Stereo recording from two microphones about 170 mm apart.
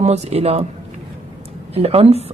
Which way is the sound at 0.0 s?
40° right (ahead or behind).